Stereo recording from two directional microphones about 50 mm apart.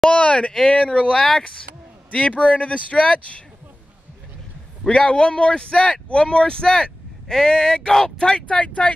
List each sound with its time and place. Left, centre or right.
0.1 s speech: left
2.0 s speech: left
4.8 s speech: centre